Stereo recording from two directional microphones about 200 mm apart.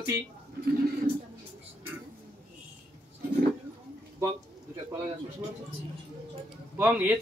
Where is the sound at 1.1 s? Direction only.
25° right (ahead or behind).